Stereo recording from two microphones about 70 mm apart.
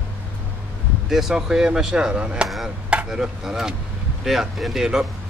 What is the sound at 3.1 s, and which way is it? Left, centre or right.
Speech, centre.